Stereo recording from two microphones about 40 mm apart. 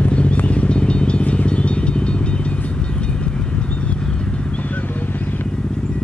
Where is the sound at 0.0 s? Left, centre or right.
Left.